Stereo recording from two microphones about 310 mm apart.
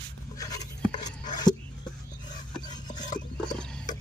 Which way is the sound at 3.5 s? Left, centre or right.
Centre.